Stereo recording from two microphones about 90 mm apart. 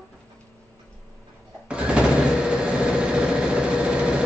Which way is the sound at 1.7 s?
10° right (ahead or behind).